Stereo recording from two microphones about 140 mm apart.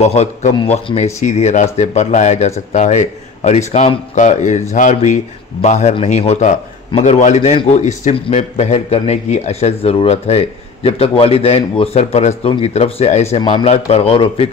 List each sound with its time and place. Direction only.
0.0 s speech: 50° left (ahead or behind)
13.4 s speech: 35° left (ahead or behind)
13.7 s speech: 45° left (ahead or behind)